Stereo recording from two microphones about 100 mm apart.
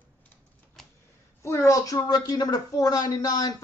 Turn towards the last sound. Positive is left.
turn(degrees=40)  # may be behind; listen again after turning